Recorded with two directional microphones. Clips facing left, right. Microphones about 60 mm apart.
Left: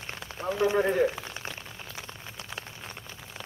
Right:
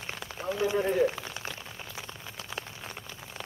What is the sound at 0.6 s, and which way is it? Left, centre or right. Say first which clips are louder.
Speech: left 2 dB; left.